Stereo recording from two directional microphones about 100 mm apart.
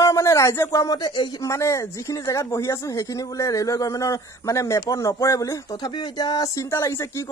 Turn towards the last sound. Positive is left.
turn(degrees=25)  # may be behind; listen again after turning